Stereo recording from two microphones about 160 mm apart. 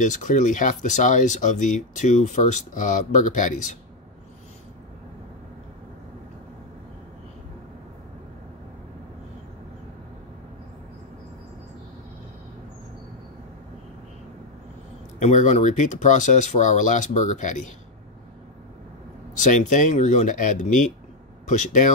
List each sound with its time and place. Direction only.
0.0 s speech: 50° left (ahead or behind)
15.1 s speech: 50° left (ahead or behind)
19.3 s speech: 55° left (ahead or behind)